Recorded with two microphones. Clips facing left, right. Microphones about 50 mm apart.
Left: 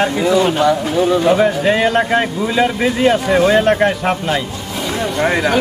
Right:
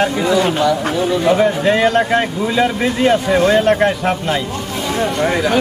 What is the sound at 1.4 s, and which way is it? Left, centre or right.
A man's voice, centre.